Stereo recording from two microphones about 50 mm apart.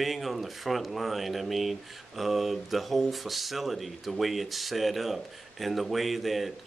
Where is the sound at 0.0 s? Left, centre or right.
Centre.